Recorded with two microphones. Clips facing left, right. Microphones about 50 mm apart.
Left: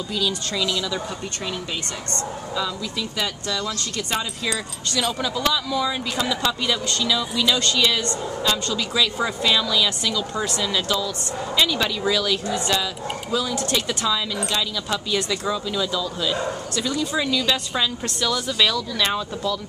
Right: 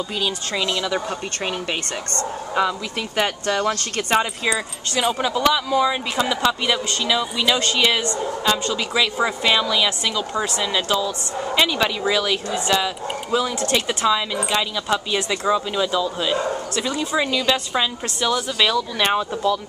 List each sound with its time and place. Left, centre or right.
0.1 s speech: right
1.4 s speech: right
4.5 s speech: right
12.5 s speech: centre
12.8 s speech: right